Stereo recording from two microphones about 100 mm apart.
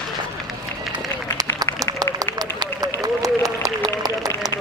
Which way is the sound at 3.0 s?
35° right (ahead or behind).